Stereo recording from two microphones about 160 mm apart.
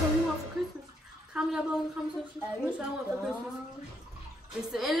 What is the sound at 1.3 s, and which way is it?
Female singing, 5° right (ahead or behind).